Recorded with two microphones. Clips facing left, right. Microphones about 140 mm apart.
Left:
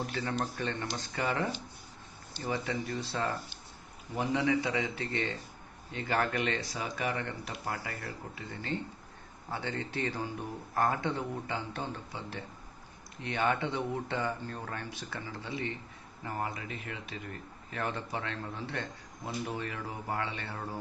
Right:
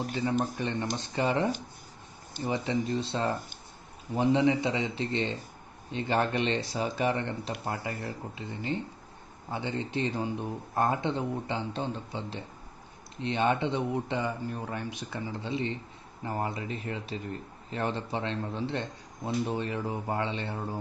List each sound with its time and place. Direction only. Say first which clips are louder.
0.1 s speech: right 5 dB; 15° right (ahead or behind)